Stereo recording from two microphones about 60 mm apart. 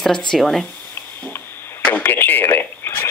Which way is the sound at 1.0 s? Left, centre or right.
Left.